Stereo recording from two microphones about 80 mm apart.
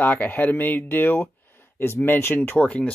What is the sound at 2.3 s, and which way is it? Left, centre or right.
Speech, centre.